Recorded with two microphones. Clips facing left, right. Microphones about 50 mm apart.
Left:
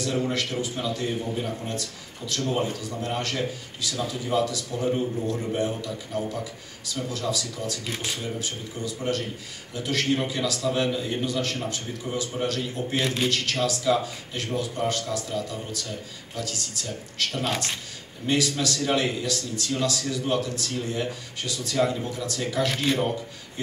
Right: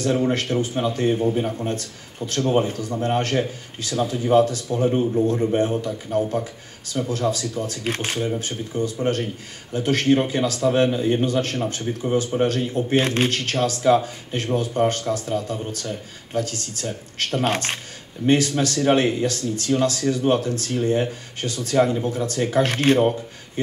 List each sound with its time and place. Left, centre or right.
0.0 s speech: right
22.9 s speech: right